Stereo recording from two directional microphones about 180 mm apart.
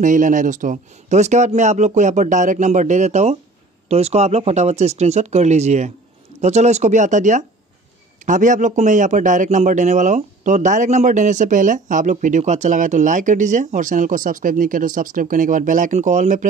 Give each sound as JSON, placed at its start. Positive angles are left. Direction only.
{"t": 0.0, "sound": "speech", "side_deg": -45}